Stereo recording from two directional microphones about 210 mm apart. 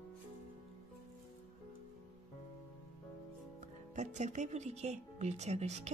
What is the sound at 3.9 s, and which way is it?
Speech, 35° right (ahead or behind).